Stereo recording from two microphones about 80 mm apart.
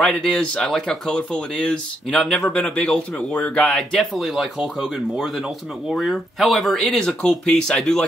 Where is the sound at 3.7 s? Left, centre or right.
Centre.